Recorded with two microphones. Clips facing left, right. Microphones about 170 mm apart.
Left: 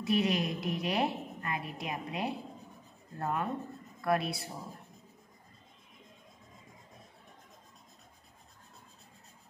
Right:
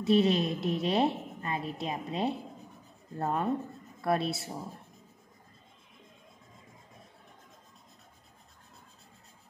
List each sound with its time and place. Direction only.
0.0 s a woman's voice: 30° right (ahead or behind)